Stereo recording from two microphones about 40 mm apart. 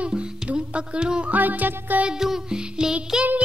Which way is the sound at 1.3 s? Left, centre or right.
Right.